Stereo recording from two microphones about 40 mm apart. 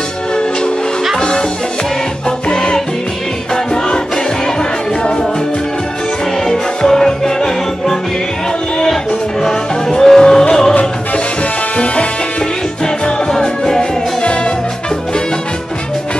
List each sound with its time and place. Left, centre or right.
2.2 s music: centre
6.4 s music: centre
9.8 s music: centre
11.7 s music: left
13.3 s music: centre